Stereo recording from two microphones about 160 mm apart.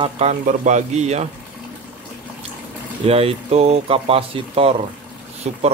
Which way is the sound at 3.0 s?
40° right (ahead or behind).